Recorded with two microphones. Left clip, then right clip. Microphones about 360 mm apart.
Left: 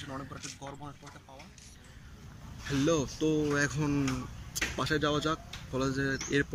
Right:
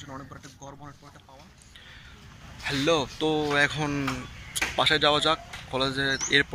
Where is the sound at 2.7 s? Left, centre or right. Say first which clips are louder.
Right 5 dB; centre.